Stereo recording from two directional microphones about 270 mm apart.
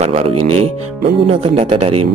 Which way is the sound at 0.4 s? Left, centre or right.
Right.